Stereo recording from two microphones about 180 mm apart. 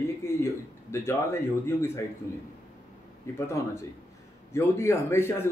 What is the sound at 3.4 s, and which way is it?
A man's voice, 15° left (ahead or behind).